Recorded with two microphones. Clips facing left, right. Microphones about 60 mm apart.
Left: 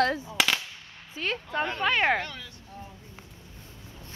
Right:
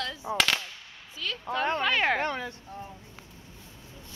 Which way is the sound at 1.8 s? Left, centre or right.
Centre.